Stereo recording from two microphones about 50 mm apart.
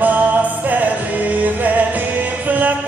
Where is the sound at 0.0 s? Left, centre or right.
Right.